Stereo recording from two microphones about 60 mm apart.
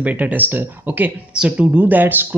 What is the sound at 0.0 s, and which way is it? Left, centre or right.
Speech, right.